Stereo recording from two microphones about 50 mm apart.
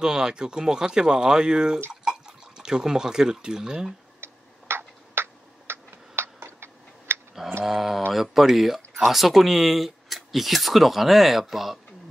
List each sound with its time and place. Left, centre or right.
0.0 s speech: centre
4.2 s tick-tock: right
7.6 s speech: centre